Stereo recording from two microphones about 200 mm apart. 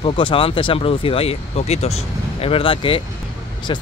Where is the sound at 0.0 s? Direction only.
25° left (ahead or behind).